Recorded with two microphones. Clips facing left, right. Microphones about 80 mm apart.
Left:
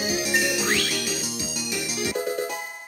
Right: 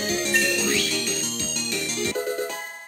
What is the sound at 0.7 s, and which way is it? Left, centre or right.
Music, left.